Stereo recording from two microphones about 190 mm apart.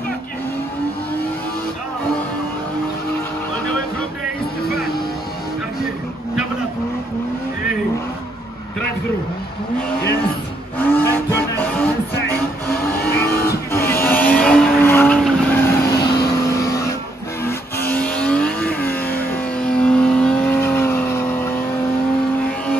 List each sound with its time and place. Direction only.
10.8 s vehicle: 10° left (ahead or behind)
11.6 s music: 5° left (ahead or behind)
12.7 s vehicle: 50° left (ahead or behind)
14.0 s vehicle: 10° left (ahead or behind)